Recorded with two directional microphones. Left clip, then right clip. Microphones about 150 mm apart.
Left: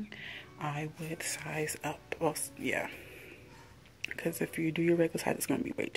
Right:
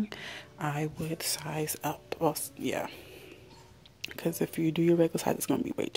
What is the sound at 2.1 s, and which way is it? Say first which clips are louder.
Speech: right 3 dB; 30° right (ahead or behind).